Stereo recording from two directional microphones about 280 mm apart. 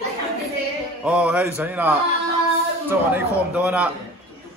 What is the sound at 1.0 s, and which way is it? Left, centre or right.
Speech, centre.